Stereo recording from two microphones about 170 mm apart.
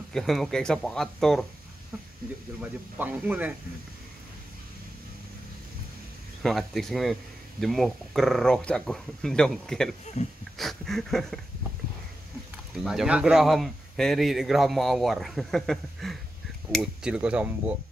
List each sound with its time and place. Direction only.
0.1 s speech: centre (ahead or behind)
2.6 s speech: 10° right (ahead or behind)
6.4 s speech: centre (ahead or behind)
10.2 s speech: 40° left (ahead or behind)
10.6 s speech: centre (ahead or behind)
12.8 s speech: 5° right (ahead or behind)